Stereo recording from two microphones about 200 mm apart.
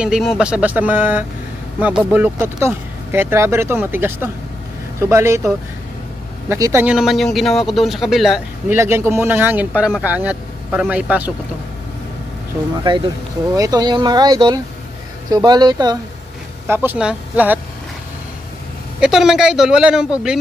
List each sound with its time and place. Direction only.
0.0 s speech: 5° right (ahead or behind)
6.5 s speech: 10° right (ahead or behind)
8.7 s speech: 15° right (ahead or behind)
12.8 s speech: 20° right (ahead or behind)
16.6 s speech: 10° right (ahead or behind)
18.9 s speech: 5° right (ahead or behind)